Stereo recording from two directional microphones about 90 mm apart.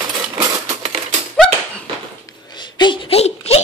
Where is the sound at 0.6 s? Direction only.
75° right (ahead or behind).